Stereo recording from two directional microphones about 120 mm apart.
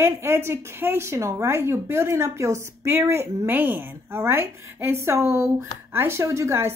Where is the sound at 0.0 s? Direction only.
20° right (ahead or behind).